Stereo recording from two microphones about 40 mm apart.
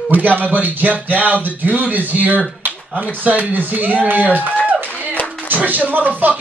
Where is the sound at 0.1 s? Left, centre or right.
Right.